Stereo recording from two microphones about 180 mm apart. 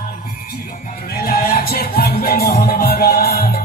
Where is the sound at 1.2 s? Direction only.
55° left (ahead or behind).